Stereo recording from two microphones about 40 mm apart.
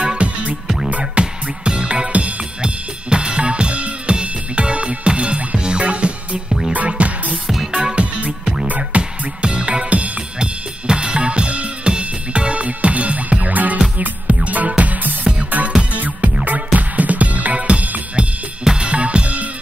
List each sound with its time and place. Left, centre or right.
0.0 s music: right
1.2 s music: right
2.6 s drum kit: right
6.9 s music: right
9.4 s music: right
10.4 s drum kit: right
14.2 s music: right
18.8 s drum kit: right